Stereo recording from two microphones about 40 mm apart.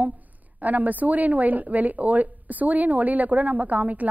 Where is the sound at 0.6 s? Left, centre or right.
Right.